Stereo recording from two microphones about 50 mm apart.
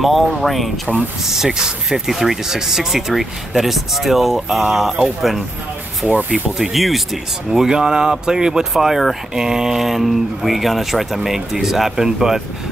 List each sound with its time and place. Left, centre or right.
0.0 s speech: centre
6.0 s speech: right
6.6 s speech: centre